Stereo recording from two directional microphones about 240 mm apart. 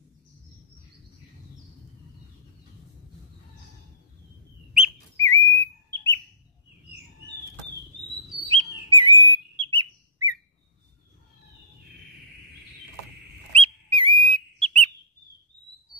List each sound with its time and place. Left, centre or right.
5.2 s bird: centre
8.5 s bird: centre
13.5 s whistle: right